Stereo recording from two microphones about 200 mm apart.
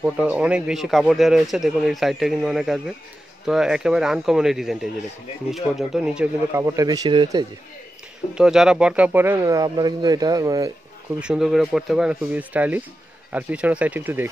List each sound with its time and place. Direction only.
0.0 s a man's voice: 5° right (ahead or behind)
8.4 s a man's voice: 5° right (ahead or behind)
11.1 s a man's voice: 5° right (ahead or behind)